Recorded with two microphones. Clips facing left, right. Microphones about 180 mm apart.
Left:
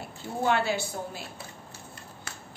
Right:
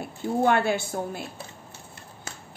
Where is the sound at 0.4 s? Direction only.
55° right (ahead or behind).